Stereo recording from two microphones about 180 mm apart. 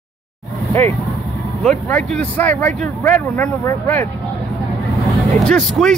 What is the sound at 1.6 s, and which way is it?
Speech, 5° left (ahead or behind).